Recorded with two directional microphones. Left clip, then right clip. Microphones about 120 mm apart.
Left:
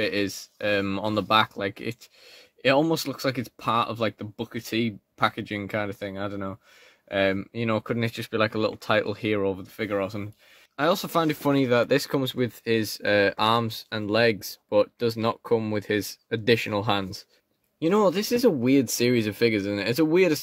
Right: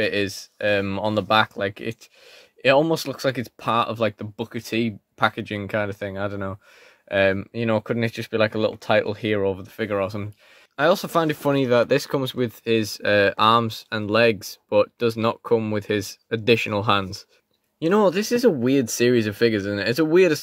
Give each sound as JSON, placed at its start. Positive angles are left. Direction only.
{"t": 0.0, "sound": "speech", "side_deg": -25}
{"t": 2.6, "sound": "speech", "side_deg": -30}
{"t": 10.8, "sound": "speech", "side_deg": -30}